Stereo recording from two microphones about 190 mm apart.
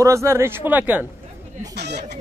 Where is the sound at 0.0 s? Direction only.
15° right (ahead or behind).